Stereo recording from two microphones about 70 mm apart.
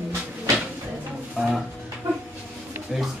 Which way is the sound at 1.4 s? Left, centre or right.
Centre.